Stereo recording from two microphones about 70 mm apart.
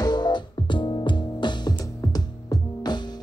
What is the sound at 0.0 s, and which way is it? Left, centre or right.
Music, left.